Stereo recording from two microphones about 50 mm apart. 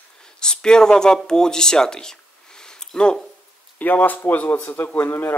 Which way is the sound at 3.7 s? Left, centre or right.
Left.